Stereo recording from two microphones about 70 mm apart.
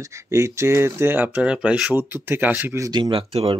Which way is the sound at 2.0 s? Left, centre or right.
Right.